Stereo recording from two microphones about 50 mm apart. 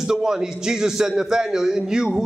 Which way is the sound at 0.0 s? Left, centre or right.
Centre.